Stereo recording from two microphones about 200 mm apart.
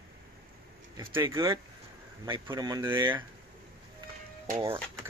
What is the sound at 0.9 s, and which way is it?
Speech, 15° right (ahead or behind).